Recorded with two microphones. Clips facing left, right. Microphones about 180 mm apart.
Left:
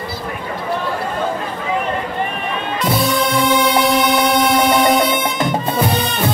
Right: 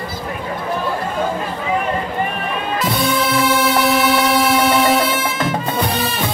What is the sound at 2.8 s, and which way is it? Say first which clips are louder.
Music: left 2 dB; centre (ahead or behind).